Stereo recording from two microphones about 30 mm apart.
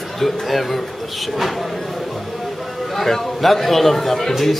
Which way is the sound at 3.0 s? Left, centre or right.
Centre.